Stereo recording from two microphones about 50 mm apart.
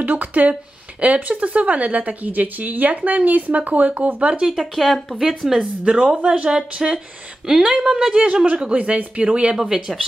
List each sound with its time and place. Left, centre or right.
0.0 s speech: right
4.6 s speech: centre
5.9 s speech: centre
8.1 s speech: right